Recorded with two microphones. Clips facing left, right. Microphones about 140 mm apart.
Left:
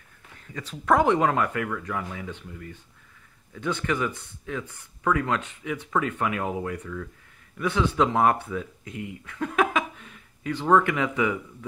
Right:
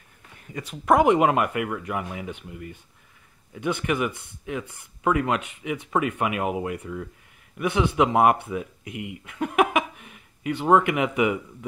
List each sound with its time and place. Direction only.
0.5 s speech: 15° right (ahead or behind)